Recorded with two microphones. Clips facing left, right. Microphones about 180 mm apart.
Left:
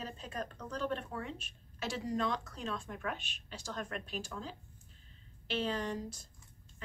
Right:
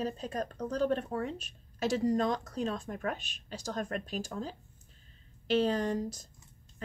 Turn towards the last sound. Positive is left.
turn(degrees=-40)  # may be behind; listen again after turning